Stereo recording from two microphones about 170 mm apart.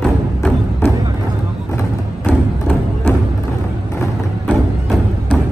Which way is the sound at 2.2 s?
10° left (ahead or behind).